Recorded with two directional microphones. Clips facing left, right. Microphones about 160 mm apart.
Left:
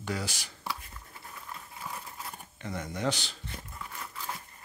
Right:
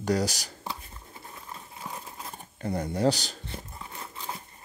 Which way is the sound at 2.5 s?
35° right (ahead or behind).